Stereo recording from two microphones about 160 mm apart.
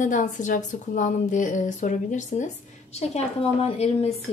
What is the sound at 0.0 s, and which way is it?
Speech, 50° left (ahead or behind).